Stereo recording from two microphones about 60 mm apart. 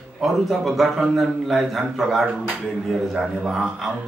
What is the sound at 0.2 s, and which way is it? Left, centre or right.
Speech, centre.